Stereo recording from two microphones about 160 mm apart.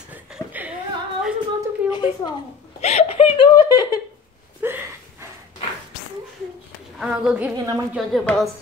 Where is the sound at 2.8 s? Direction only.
40° left (ahead or behind); by 4.0 s 25° left (ahead or behind).